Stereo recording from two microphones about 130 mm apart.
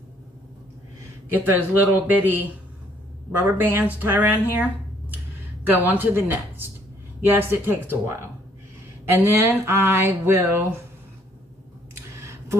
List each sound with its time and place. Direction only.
1.3 s speech: 15° right (ahead or behind)
9.2 s a sound: 15° right (ahead or behind)
12.2 s scissors: 20° right (ahead or behind)